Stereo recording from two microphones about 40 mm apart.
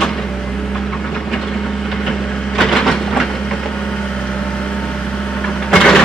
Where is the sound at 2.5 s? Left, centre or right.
Centre.